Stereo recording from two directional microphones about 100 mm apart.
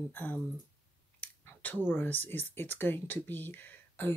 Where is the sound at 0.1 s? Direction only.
20° left (ahead or behind).